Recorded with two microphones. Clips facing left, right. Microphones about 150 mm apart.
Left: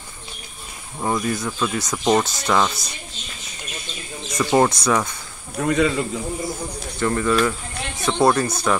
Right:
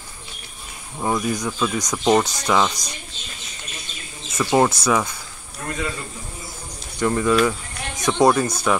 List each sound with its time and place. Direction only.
0.9 s speech: 5° right (ahead or behind)
4.3 s speech: centre (ahead or behind)
5.6 s speech: 70° left (ahead or behind)
7.0 s speech: 10° right (ahead or behind)